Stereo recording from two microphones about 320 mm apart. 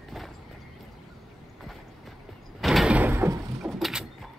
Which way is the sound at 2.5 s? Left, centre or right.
Centre.